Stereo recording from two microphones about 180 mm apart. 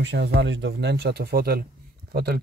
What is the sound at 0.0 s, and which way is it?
Speech, 75° right (ahead or behind).